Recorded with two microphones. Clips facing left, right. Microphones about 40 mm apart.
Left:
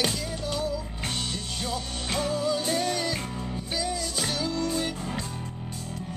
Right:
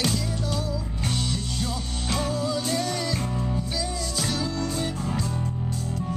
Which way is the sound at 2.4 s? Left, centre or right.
Left.